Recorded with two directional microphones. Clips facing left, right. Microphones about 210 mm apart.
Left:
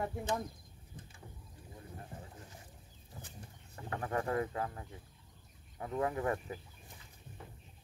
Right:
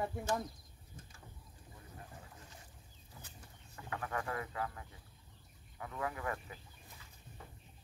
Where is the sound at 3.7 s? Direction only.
35° left (ahead or behind).